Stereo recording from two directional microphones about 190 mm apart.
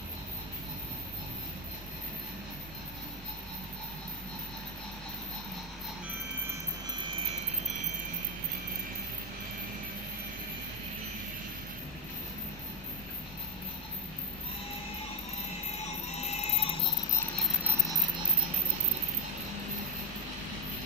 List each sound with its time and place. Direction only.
15.8 s music: 35° left (ahead or behind)